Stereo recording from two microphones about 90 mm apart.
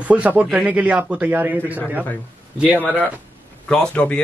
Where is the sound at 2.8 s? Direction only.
15° left (ahead or behind).